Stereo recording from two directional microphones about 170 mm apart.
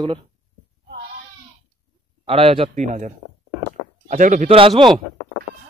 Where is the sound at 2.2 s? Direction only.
35° right (ahead or behind); by 4.4 s 50° right (ahead or behind).